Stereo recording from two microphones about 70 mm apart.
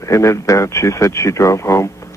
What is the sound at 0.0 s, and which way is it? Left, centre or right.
Speech, left.